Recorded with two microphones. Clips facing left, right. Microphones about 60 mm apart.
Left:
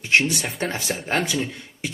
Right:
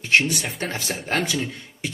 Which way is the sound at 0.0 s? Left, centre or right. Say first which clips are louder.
Even; centre.